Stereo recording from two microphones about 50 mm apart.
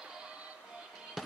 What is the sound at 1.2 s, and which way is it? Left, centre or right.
Music, centre.